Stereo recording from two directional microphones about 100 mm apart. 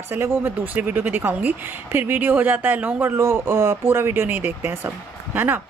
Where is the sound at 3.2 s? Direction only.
30° right (ahead or behind).